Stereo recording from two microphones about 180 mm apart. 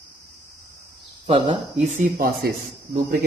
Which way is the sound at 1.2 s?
30° right (ahead or behind).